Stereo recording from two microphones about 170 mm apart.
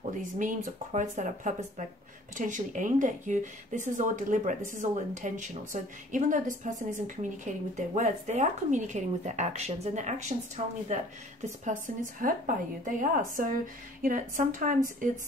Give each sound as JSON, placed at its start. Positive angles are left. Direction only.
{"t": 0.2, "sound": "speech", "side_deg": -50}